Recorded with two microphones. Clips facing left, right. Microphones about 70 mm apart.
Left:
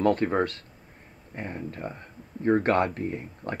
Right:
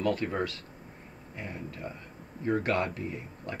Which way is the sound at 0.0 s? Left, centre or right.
Left.